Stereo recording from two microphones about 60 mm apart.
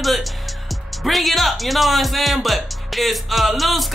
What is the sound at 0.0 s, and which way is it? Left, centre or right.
Music, centre.